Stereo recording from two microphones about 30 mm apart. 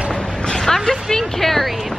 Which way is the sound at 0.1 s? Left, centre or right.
Centre.